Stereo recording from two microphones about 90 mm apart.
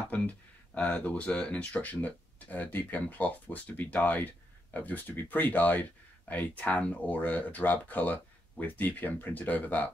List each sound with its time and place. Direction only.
0.1 s speech: 15° left (ahead or behind)